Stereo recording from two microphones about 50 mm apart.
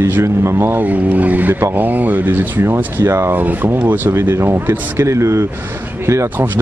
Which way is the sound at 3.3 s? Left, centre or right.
Right.